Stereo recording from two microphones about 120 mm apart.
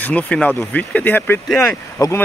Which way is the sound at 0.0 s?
10° left (ahead or behind).